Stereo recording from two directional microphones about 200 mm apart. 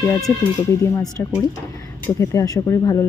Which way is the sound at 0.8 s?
15° left (ahead or behind).